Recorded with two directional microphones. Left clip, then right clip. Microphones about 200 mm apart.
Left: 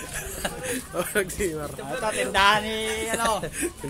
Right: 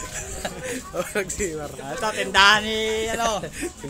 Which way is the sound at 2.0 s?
30° right (ahead or behind).